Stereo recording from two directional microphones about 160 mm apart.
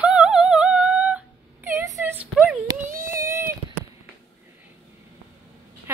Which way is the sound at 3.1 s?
15° right (ahead or behind).